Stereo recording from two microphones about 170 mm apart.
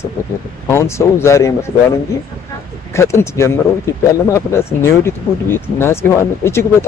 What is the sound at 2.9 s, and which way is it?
A man's voice, 15° left (ahead or behind).